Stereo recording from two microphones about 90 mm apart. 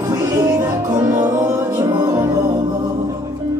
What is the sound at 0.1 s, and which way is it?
Music, 45° right (ahead or behind).